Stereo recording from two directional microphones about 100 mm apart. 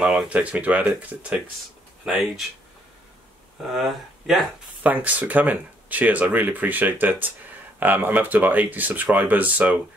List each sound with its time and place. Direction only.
0.0 s speech: 5° right (ahead or behind)
0.3 s speech: 15° right (ahead or behind)
2.0 s speech: 5° right (ahead or behind)
3.7 s speech: centre (ahead or behind)
4.8 s speech: 15° right (ahead or behind)